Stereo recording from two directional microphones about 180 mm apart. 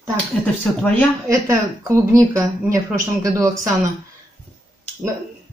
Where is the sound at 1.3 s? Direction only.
15° right (ahead or behind).